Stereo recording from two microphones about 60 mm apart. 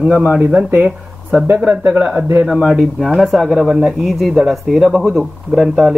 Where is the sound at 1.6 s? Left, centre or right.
Centre.